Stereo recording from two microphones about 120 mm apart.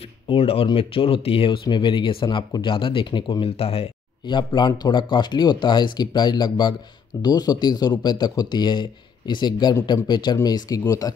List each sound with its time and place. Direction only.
0.3 s speech: 50° left (ahead or behind)
4.3 s speech: 40° left (ahead or behind)